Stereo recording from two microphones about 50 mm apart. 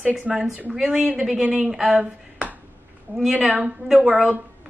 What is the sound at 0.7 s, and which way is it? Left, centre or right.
Speech, centre.